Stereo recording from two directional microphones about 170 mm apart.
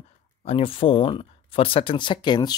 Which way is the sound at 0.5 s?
30° left (ahead or behind).